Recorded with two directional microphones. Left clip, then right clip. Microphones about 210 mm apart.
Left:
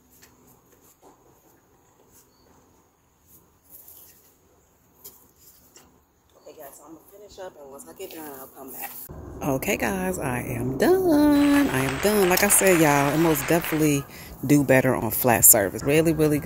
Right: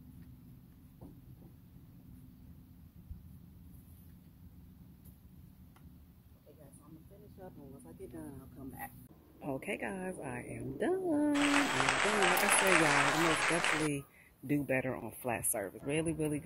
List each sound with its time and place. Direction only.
9.4 s a woman's voice: 5° left (ahead or behind)
14.4 s speech: 15° left (ahead or behind)